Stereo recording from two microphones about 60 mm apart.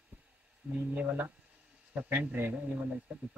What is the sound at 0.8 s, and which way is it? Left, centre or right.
A woman's voice, right.